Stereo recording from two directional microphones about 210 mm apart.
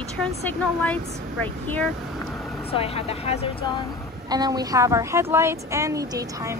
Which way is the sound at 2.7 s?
30° left (ahead or behind).